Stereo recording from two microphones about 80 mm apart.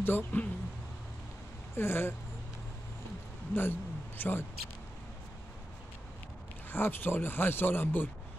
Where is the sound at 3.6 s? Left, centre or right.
Left.